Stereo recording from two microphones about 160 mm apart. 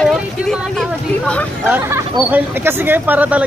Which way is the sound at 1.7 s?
10° right (ahead or behind).